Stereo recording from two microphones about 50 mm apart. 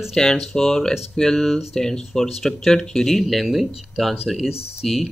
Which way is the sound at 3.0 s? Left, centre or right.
Centre.